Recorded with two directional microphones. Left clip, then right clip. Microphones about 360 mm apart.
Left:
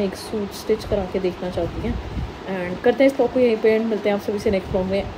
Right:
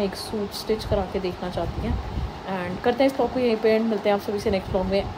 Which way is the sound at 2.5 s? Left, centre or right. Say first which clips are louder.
Left 4 dB; centre.